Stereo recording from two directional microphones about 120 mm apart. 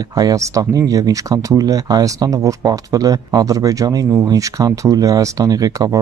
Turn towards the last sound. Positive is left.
turn(degrees=-30)  # may be behind; listen again after turning